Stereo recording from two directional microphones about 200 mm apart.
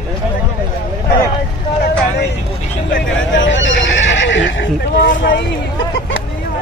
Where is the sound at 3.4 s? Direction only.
65° left (ahead or behind).